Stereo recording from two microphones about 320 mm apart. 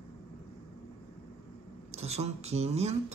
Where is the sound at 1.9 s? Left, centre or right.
Centre.